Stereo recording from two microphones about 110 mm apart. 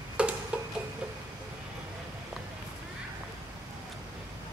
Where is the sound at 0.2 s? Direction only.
10° right (ahead or behind).